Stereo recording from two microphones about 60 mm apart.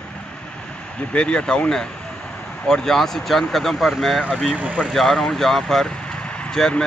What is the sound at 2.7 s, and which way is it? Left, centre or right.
Speech, centre.